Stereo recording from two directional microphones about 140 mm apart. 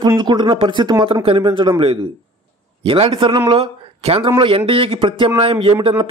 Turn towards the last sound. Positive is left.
turn(degrees=-40)  # may be behind; listen again after turning